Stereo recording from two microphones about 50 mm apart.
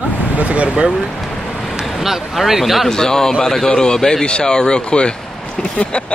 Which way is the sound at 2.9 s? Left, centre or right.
Centre.